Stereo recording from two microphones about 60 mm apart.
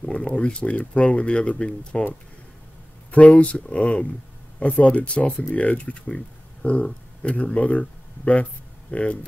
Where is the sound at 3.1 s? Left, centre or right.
Left.